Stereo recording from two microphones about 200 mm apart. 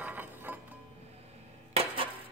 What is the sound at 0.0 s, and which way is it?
Music, 10° right (ahead or behind).